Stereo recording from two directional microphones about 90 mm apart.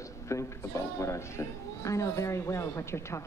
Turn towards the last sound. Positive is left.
turn(degrees=30)  # may be behind; listen again after turning